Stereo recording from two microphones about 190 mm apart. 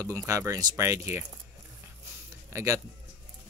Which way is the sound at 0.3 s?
15° right (ahead or behind).